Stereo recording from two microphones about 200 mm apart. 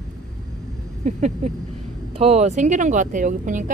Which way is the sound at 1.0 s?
35° right (ahead or behind).